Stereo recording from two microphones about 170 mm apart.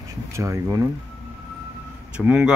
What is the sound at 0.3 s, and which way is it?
Speech, 15° right (ahead or behind).